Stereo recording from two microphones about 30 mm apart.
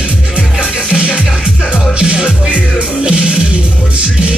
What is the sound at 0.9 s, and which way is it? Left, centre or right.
Music, right.